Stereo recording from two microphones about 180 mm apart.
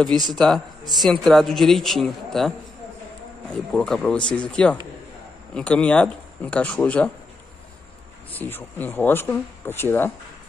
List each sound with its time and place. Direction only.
0.3 s speech: centre (ahead or behind)
8.3 s speech: 10° left (ahead or behind)